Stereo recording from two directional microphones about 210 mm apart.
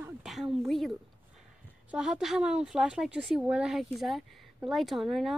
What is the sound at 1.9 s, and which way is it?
A woman's voice, 5° right (ahead or behind).